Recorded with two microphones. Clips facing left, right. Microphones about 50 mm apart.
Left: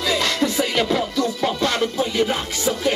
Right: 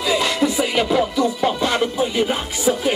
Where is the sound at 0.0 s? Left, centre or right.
Centre.